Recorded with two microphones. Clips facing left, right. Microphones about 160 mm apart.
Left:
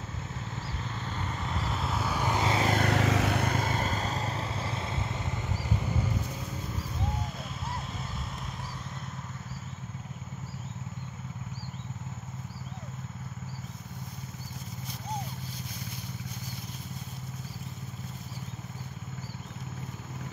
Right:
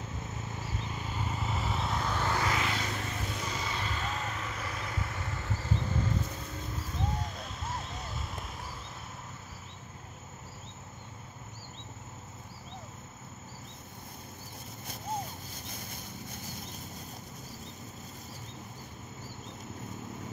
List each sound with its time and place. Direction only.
0.6 s vehicle: 15° right (ahead or behind); by 2.6 s 20° left (ahead or behind)
2.6 s vehicle: 50° left (ahead or behind)
2.9 s vehicle: 85° left; by 5.7 s 20° left (ahead or behind)